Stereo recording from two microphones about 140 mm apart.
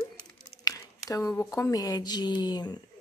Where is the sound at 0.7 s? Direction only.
25° left (ahead or behind).